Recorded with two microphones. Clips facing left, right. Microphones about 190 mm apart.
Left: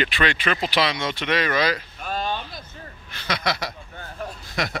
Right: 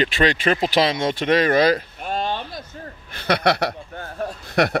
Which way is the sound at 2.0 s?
25° right (ahead or behind).